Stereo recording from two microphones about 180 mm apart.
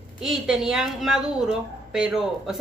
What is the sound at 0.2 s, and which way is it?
A woman's voice, centre (ahead or behind).